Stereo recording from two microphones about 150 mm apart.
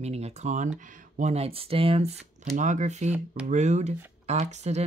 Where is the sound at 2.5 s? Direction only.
55° right (ahead or behind).